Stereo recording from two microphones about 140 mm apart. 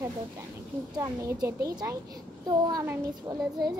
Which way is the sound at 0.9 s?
25° right (ahead or behind).